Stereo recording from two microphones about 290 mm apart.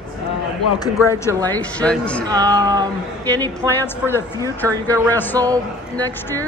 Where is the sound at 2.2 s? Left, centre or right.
Centre.